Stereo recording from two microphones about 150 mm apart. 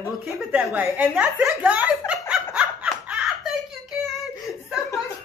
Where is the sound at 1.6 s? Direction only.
10° right (ahead or behind).